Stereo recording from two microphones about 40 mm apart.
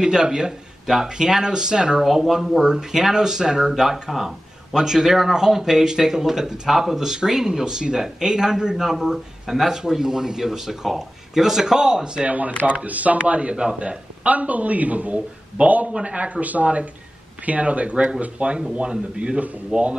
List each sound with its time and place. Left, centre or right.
0.0 s a man's voice: centre
2.0 s speech: centre
2.6 s a man's voice: centre
12.3 s a man's voice: right